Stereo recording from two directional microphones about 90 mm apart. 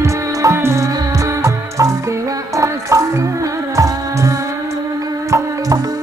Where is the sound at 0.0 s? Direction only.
35° right (ahead or behind).